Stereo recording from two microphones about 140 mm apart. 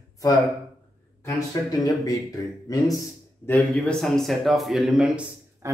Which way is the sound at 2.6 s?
25° left (ahead or behind).